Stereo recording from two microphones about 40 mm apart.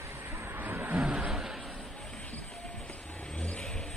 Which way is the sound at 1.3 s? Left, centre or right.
Centre.